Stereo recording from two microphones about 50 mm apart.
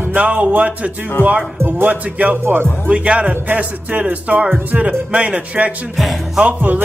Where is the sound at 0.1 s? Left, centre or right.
Right.